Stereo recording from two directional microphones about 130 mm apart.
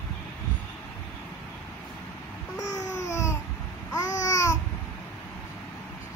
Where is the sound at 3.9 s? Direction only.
25° left (ahead or behind).